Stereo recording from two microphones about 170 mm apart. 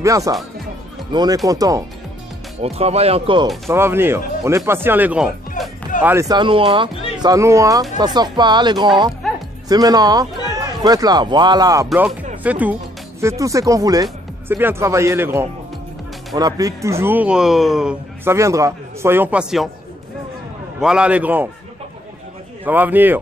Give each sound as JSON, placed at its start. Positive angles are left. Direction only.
{"t": 0.0, "sound": "speech", "side_deg": -20}
{"t": 2.6, "sound": "speech", "side_deg": -35}
{"t": 3.7, "sound": "speech", "side_deg": -15}
{"t": 6.0, "sound": "a man's voice", "side_deg": -20}
{"t": 12.4, "sound": "speech", "side_deg": -10}
{"t": 18.2, "sound": "speech", "side_deg": -15}
{"t": 20.8, "sound": "speech", "side_deg": -5}
{"t": 22.7, "sound": "speech", "side_deg": -10}